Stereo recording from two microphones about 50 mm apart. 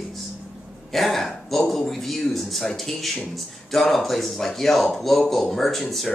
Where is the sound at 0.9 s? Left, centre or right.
Centre.